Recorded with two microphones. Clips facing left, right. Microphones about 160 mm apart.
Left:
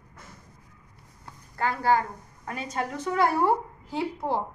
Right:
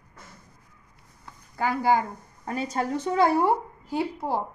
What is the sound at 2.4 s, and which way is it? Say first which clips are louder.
Speech: right 4 dB; 30° right (ahead or behind).